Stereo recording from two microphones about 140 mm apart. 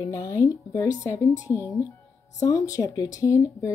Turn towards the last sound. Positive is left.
turn(degrees=25)  # may be behind; listen again after turning